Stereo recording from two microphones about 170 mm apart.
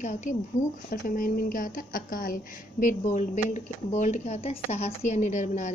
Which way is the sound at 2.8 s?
45° left (ahead or behind).